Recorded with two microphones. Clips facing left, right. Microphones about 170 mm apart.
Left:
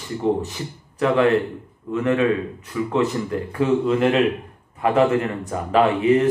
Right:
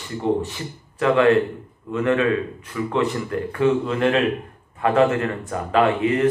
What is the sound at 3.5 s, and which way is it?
A man's voice, 15° left (ahead or behind).